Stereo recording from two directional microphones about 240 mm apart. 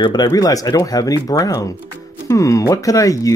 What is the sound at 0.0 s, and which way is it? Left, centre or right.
Speech, centre.